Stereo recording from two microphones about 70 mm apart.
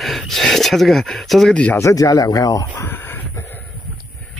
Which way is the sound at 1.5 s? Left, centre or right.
Centre.